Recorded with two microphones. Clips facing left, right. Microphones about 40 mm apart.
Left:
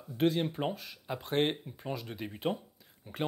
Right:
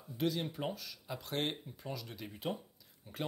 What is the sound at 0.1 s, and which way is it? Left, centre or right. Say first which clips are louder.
Speech: left 6 dB; left.